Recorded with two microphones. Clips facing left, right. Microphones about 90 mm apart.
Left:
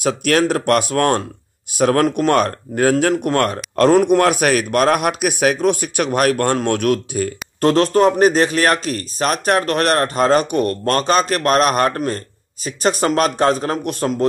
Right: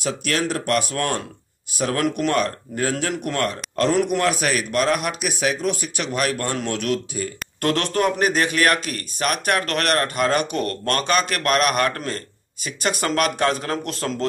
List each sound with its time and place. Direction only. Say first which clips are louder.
0.0 s speech: left 7 dB; 50° left (ahead or behind)
7.6 s speech: left 7 dB; 25° left (ahead or behind)
10.5 s a man's voice: left 6 dB; 20° left (ahead or behind)
10.9 s a man's voice: left 4 dB; 30° left (ahead or behind)